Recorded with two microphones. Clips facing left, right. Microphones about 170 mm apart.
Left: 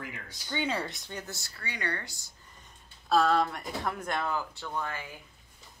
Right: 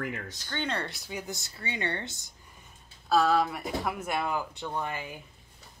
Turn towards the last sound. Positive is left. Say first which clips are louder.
# right 2 dB
turn(degrees=-20)  # may be behind; listen again after turning